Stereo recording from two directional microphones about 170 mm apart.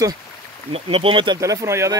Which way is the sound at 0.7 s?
35° right (ahead or behind).